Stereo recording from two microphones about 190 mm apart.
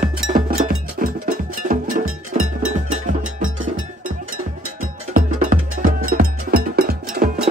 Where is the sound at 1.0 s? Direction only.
40° right (ahead or behind).